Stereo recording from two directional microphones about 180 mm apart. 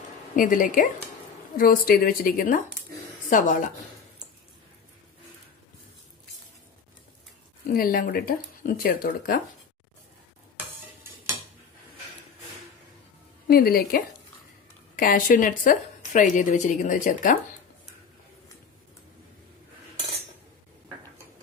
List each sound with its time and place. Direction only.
0.4 s speech: 50° left (ahead or behind)
7.7 s speech: 55° left (ahead or behind)
13.5 s a woman's voice: 55° left (ahead or behind)